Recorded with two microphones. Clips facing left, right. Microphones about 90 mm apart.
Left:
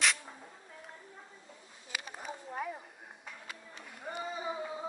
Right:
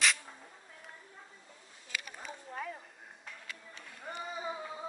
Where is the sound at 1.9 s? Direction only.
20° left (ahead or behind).